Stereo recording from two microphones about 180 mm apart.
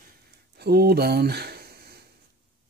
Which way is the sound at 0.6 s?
60° right (ahead or behind).